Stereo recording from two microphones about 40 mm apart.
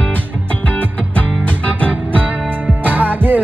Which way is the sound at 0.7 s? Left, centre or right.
Left.